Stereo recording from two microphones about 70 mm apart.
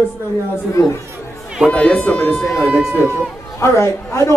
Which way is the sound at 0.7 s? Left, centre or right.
Left.